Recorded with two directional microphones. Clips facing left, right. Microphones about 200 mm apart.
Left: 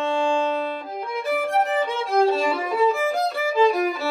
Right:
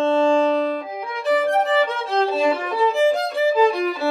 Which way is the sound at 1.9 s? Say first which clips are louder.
Left 2 dB; centre (ahead or behind).